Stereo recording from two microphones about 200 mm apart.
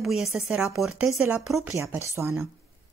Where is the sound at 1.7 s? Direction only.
15° right (ahead or behind).